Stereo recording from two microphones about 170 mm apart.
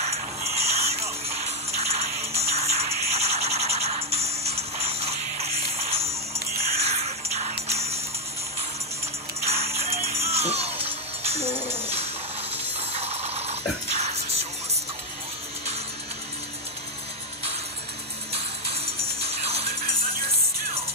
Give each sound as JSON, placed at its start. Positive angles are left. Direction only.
{"t": 0.6, "sound": "a sound", "side_deg": -40}
{"t": 1.8, "sound": "music", "side_deg": -40}
{"t": 9.4, "sound": "music", "side_deg": -35}
{"t": 11.5, "sound": "tambourine", "side_deg": -15}
{"t": 12.9, "sound": "music", "side_deg": -35}
{"t": 18.3, "sound": "music", "side_deg": -35}